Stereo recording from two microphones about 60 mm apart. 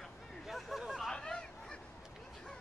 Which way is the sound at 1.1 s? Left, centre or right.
Centre.